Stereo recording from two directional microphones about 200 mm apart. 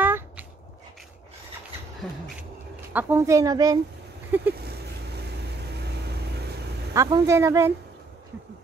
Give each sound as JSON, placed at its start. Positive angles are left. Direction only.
{"t": 0.0, "sound": "a sound", "side_deg": -10}
{"t": 2.9, "sound": "speech", "side_deg": -10}
{"t": 6.9, "sound": "speech", "side_deg": -20}